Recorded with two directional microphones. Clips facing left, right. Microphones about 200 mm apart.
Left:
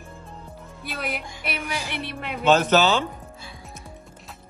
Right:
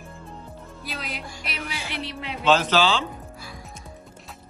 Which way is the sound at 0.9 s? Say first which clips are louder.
Left 4 dB; 55° left (ahead or behind).